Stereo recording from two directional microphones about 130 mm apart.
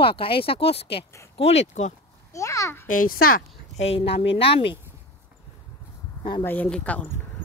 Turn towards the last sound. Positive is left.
turn(degrees=10)  # may be behind; listen again after turning